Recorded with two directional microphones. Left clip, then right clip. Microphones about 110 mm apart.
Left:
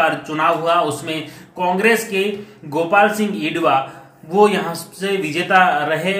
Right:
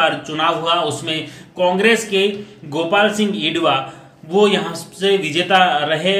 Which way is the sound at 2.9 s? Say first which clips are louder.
Left 1 dB; 15° right (ahead or behind).